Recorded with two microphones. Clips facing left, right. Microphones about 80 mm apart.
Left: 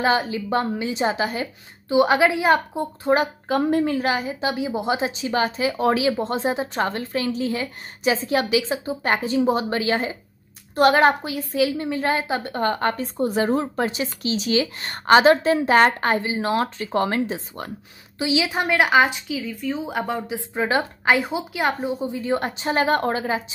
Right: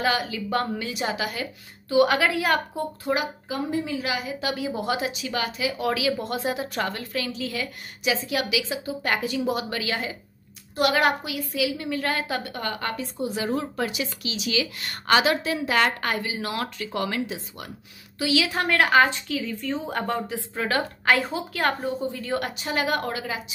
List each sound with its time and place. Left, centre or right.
0.0 s a woman's voice: left
3.4 s a woman's voice: left
18.2 s a woman's voice: left
20.2 s a woman's voice: centre